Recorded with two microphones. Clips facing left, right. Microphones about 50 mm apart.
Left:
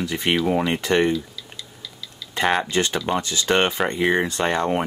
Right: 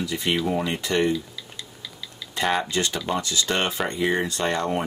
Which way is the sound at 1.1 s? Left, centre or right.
Centre.